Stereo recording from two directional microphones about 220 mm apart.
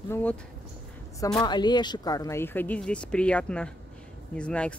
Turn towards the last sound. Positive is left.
turn(degrees=5)  # may be behind; listen again after turning